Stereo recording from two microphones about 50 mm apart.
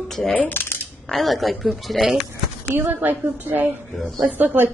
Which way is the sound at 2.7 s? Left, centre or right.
Right.